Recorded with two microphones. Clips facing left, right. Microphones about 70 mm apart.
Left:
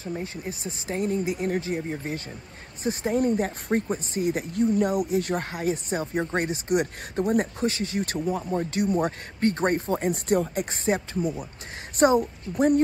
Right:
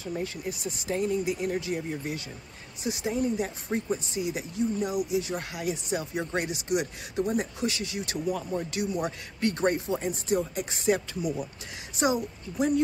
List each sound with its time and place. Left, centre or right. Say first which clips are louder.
0.1 s speech: even; left
8.3 s speech: left 3 dB; left
10.9 s speech: even; left
12.0 s speech: left 7 dB; left